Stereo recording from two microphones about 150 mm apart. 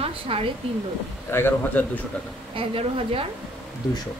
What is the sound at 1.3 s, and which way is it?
Speech, 15° left (ahead or behind).